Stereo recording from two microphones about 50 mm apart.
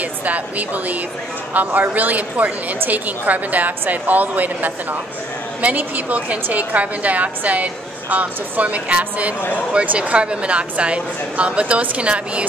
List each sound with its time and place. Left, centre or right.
0.0 s a woman's voice: right